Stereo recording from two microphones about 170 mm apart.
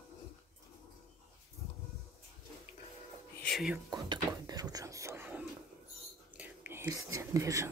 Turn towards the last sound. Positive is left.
turn(degrees=-20)  # may be behind; listen again after turning